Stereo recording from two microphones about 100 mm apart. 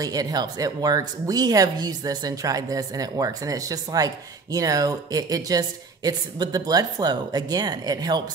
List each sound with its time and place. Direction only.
0.0 s speech: 40° right (ahead or behind)